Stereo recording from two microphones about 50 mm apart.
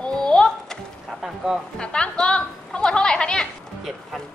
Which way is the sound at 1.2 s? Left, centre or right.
Centre.